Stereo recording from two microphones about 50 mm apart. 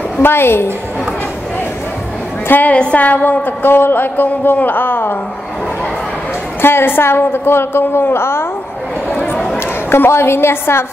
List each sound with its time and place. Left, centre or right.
0.2 s a woman's voice: left
2.6 s a woman's voice: left
6.6 s a woman's voice: left
9.8 s a woman's voice: left